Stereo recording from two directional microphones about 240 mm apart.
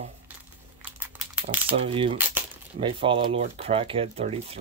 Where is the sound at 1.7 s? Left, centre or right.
Right.